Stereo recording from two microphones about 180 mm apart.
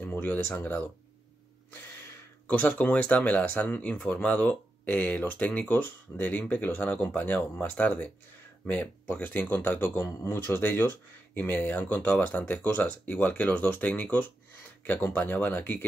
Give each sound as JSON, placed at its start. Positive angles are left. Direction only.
{"t": 0.0, "sound": "speech", "side_deg": 10}
{"t": 2.4, "sound": "speech", "side_deg": 10}